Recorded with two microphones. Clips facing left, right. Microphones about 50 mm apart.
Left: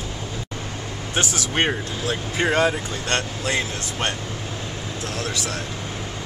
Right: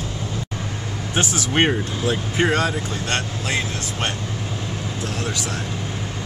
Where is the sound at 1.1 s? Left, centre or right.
Centre.